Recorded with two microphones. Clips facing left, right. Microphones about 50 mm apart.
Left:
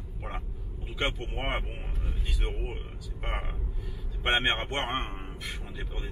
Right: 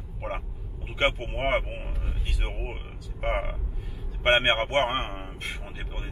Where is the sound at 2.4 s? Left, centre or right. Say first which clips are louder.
Even; right.